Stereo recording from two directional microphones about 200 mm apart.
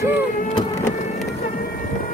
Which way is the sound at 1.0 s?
35° left (ahead or behind).